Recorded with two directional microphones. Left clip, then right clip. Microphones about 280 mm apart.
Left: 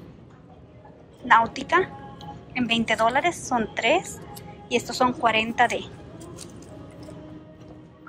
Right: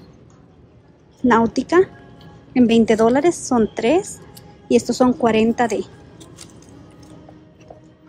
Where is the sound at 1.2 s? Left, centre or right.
Right.